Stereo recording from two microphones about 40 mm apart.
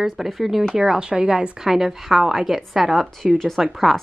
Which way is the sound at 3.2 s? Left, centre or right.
Centre.